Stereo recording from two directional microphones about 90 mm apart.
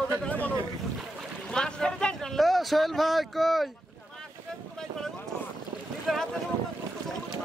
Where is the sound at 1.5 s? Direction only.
10° left (ahead or behind).